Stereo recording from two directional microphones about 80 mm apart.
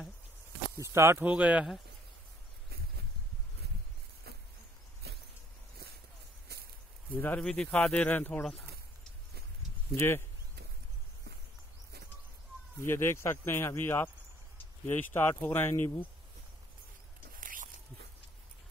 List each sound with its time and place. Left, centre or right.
0.7 s speech: right
1.2 s speech: centre
7.1 s speech: left
7.3 s speech: centre
9.9 s speech: left
12.8 s speech: left